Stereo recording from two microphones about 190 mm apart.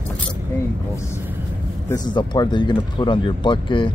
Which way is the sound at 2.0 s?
25° left (ahead or behind).